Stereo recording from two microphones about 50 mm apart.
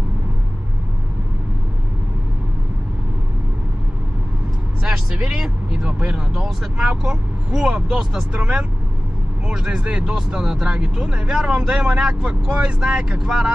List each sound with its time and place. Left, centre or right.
4.8 s speech: centre
6.3 s speech: centre
6.8 s speech: right